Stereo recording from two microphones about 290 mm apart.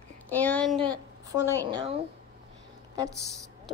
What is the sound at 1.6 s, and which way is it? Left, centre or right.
Speech, centre.